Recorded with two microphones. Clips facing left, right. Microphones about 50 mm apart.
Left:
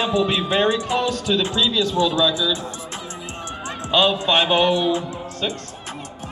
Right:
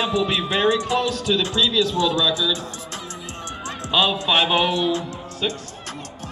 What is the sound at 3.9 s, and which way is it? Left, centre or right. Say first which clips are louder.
A man's voice: left 2 dB; centre.